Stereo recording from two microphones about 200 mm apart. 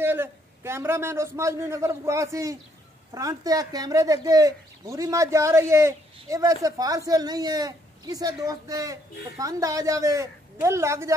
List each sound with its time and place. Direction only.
0.0 s speech: 10° right (ahead or behind)